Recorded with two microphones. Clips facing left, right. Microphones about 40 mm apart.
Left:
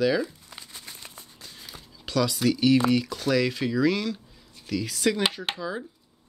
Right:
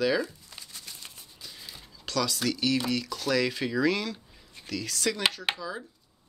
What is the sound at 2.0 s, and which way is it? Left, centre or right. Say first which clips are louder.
Speech: left 5 dB; centre.